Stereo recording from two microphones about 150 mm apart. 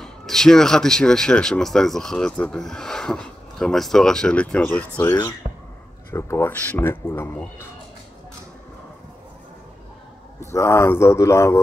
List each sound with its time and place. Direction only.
0.0 s speech: 5° left (ahead or behind)
5.0 s speech: 25° left (ahead or behind)
10.4 s speech: 20° left (ahead or behind)